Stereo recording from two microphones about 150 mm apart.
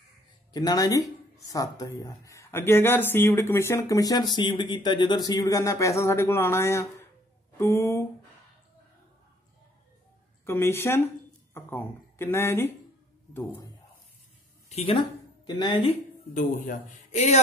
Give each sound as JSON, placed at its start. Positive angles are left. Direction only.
{"t": 0.5, "sound": "speech", "side_deg": 25}
{"t": 10.4, "sound": "speech", "side_deg": 15}
{"t": 14.7, "sound": "speech", "side_deg": 40}
{"t": 16.3, "sound": "speech", "side_deg": 60}